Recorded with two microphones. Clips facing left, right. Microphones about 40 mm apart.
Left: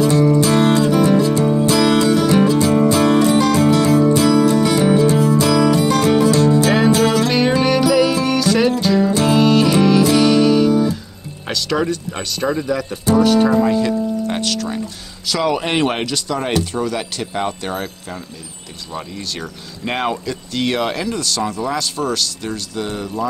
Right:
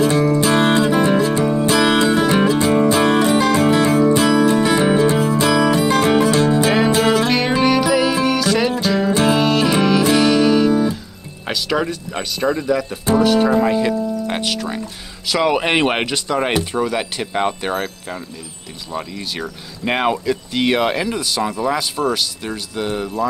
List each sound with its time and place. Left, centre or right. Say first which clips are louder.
0.0 s music: left 1 dB; centre
1.4 s music: left 1 dB; centre
7.6 s music: left 1 dB; centre
11.4 s speech: left 1 dB; centre